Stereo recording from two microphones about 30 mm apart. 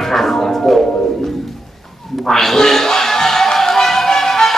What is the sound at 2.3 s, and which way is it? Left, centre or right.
Music, centre.